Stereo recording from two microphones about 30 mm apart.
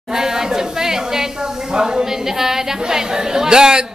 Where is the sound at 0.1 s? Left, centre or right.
Centre.